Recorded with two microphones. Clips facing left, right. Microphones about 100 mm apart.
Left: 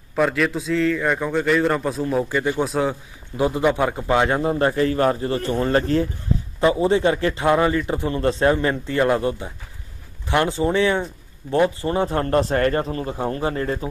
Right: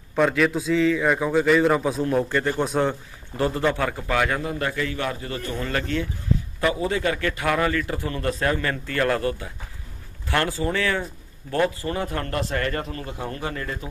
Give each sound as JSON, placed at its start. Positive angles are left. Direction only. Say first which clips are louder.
{"t": 0.1, "sound": "a man's voice", "louder": "even", "side_deg": 0}
{"t": 3.3, "sound": "a man's voice", "louder": "left 3 dB", "side_deg": 15}